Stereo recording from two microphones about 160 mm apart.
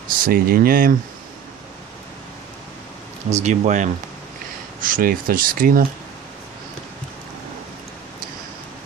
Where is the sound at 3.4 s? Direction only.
50° right (ahead or behind).